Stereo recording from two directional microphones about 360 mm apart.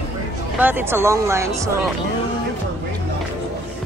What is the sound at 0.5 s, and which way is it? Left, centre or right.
Speech, centre.